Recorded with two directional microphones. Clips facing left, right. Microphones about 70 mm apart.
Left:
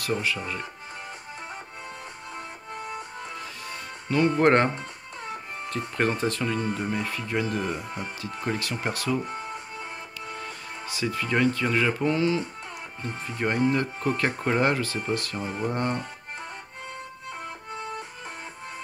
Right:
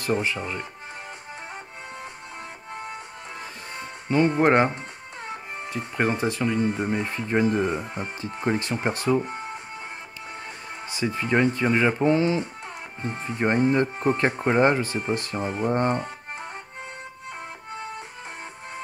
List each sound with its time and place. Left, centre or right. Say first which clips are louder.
0.0 s speech: right 3 dB; right
4.1 s speech: right 2 dB; right
5.7 s speech: right 1 dB; centre; by 9.5 s right
10.9 s speech: right 3 dB; right